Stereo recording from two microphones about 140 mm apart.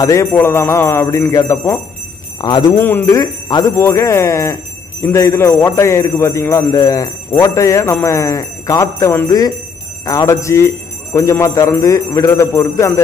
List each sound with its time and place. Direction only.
0.0 s speech: 20° left (ahead or behind)
2.8 s speech: 20° left (ahead or behind)